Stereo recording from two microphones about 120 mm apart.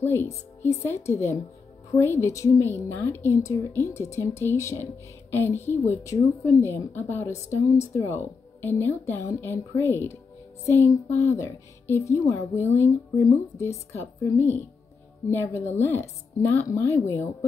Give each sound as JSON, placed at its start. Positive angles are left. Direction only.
{"t": 0.0, "sound": "a woman's voice", "side_deg": 20}
{"t": 11.2, "sound": "a woman's voice", "side_deg": 25}